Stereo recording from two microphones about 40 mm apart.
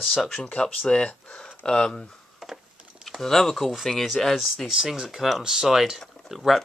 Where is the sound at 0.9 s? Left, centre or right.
Left.